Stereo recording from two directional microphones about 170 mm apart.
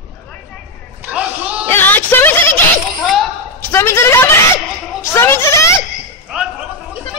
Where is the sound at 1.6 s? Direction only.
10° left (ahead or behind).